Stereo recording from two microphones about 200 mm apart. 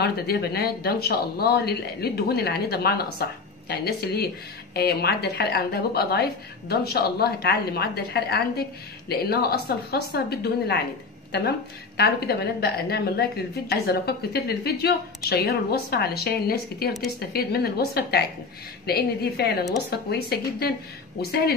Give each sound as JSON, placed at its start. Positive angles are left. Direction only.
{"t": 0.0, "sound": "a woman's voice", "side_deg": 55}
{"t": 12.0, "sound": "a woman's voice", "side_deg": 55}